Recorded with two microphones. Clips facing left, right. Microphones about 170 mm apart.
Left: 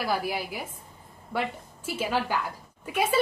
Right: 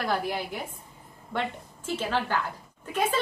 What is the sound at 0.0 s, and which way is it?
A woman's voice, 5° left (ahead or behind).